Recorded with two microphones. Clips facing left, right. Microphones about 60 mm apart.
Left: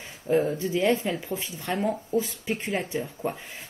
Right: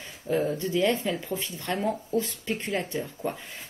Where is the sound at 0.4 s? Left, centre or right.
Centre.